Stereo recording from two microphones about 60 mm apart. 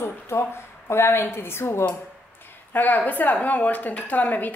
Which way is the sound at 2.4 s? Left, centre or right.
Left.